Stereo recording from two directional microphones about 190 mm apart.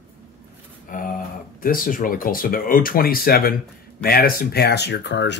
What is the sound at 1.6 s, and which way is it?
Speech, 45° left (ahead or behind).